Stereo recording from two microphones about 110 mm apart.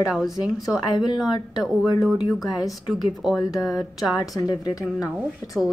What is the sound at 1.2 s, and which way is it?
A woman's voice, 40° left (ahead or behind).